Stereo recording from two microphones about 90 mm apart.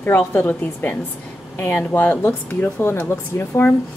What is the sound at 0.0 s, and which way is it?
Speech, 25° left (ahead or behind).